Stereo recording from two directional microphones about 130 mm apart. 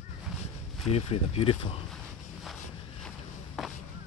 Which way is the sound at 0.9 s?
50° left (ahead or behind).